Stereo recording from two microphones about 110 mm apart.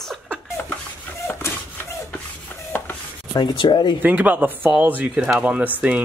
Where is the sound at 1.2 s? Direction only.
25° left (ahead or behind).